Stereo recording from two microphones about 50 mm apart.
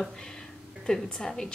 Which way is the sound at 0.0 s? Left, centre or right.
Centre.